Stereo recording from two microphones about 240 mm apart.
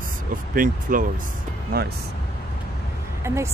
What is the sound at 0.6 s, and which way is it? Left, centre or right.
Speech, right.